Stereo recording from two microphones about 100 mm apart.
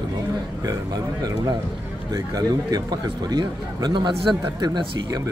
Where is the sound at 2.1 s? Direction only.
40° right (ahead or behind).